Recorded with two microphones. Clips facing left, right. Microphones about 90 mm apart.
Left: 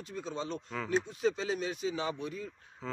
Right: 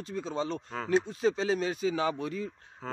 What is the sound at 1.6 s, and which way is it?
Speech, 90° right.